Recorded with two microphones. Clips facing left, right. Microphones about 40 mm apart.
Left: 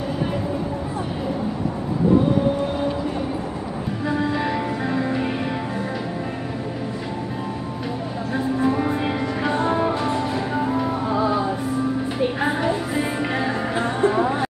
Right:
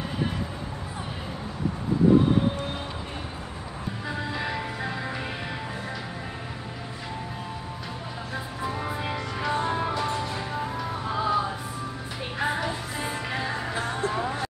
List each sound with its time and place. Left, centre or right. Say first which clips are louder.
4.1 s music: left 8 dB; centre
8.5 s music: left 9 dB; centre